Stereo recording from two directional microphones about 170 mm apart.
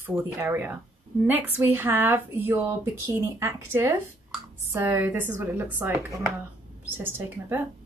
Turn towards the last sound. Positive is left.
turn(degrees=-10)  # may be behind; listen again after turning